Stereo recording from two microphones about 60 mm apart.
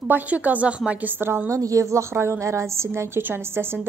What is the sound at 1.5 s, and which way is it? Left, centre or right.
A woman's voice, right.